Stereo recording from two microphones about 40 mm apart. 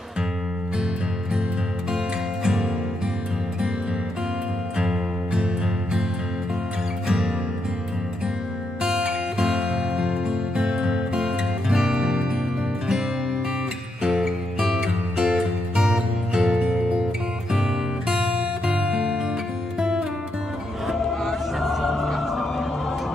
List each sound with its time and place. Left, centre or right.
4.7 s music: centre
9.4 s music: centre
14.0 s music: centre
18.1 s music: right
20.9 s music: centre